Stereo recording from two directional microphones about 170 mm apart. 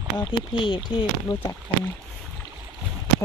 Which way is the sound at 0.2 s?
30° left (ahead or behind).